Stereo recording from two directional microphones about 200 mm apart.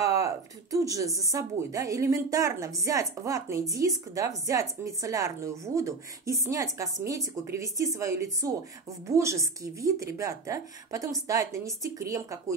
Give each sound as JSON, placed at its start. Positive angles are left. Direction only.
{"t": 0.0, "sound": "speech", "side_deg": -15}